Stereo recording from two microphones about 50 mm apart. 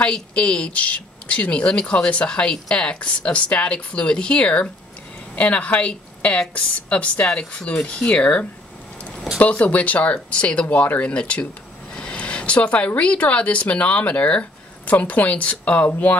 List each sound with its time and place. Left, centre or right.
0.0 s a woman's voice: left